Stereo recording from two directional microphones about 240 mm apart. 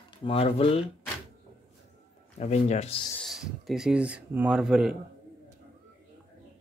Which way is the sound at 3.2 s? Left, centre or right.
Centre.